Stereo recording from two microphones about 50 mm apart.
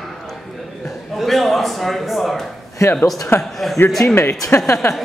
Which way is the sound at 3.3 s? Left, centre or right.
Left.